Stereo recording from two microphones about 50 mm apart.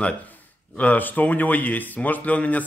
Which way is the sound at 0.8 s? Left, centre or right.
Left.